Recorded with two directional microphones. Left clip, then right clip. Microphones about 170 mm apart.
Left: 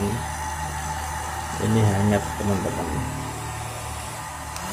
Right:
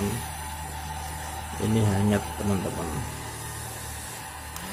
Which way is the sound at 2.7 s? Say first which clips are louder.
Left 5 dB; 30° right (ahead or behind).